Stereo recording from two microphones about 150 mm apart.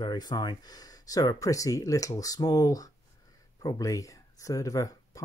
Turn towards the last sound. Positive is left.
turn(degrees=20)  # may be behind; listen again after turning